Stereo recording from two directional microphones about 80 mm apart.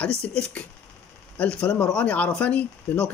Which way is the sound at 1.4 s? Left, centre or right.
Centre.